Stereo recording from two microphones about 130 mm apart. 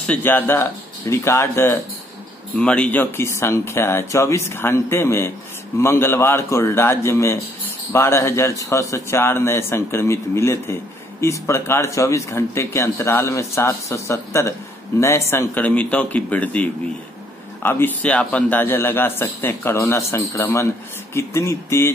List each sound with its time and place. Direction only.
0.0 s a man's voice: 10° left (ahead or behind)
2.5 s a man's voice: 10° left (ahead or behind)